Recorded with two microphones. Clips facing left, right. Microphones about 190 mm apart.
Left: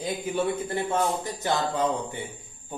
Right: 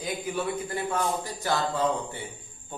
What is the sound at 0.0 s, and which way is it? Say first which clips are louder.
Speech: left 3 dB; 25° left (ahead or behind).